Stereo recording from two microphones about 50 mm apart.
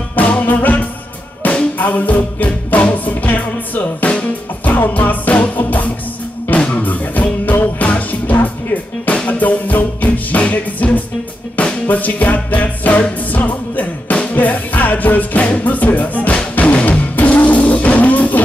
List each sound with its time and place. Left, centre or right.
0.1 s music: left
4.7 s music: left